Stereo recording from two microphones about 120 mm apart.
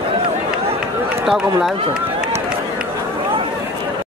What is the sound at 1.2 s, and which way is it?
Speech, 5° right (ahead or behind).